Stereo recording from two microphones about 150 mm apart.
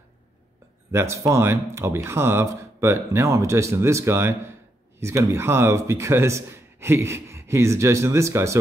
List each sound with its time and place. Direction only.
0.9 s speech: 20° right (ahead or behind)